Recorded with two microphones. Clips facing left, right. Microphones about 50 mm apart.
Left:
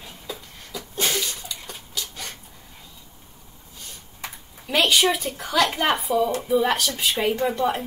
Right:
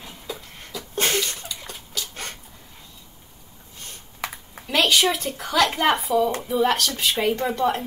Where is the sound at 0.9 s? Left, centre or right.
Right.